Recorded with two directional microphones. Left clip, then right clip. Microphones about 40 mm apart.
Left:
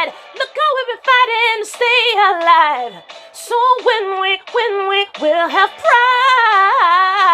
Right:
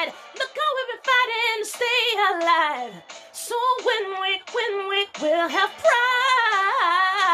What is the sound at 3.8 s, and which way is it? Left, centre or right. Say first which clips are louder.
Sheep: left 8 dB; centre.